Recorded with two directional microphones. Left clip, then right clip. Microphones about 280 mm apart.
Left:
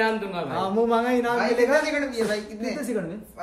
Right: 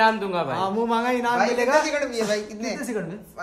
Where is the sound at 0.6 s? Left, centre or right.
Centre.